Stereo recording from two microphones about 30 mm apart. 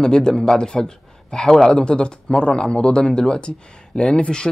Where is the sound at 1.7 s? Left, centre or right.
Left.